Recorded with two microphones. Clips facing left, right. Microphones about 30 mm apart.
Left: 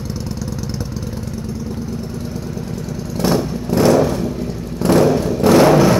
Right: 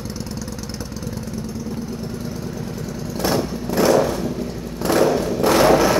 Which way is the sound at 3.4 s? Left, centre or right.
Centre.